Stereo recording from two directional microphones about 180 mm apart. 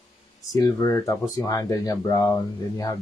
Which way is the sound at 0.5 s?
20° left (ahead or behind).